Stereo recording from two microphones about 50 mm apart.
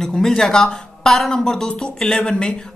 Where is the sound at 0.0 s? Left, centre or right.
Centre.